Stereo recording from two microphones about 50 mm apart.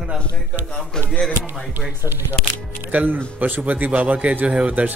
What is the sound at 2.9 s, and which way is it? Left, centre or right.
A man's voice, right.